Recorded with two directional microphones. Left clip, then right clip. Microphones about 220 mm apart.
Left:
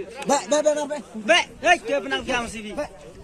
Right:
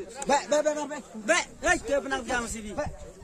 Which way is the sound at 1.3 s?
55° right (ahead or behind).